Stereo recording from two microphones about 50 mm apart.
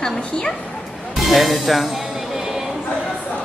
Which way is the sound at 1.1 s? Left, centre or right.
Centre.